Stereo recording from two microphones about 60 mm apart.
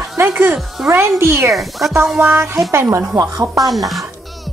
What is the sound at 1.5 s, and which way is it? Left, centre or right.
Speech, centre.